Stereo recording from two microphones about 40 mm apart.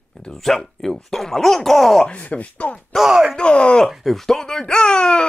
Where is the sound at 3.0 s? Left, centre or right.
Centre.